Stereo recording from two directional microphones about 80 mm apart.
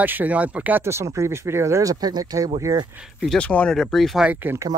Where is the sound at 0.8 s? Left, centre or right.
Right.